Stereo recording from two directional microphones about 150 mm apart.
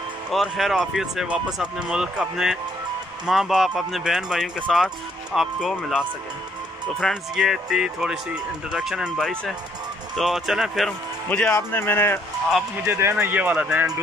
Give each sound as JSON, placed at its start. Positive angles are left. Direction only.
{"t": 0.3, "sound": "speech", "side_deg": 0}
{"t": 11.2, "sound": "speech", "side_deg": 10}
{"t": 12.8, "sound": "speech", "side_deg": -20}